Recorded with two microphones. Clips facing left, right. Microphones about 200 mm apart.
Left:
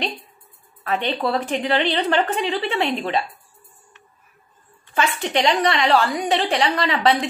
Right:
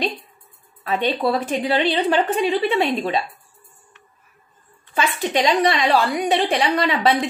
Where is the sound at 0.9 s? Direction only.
10° right (ahead or behind).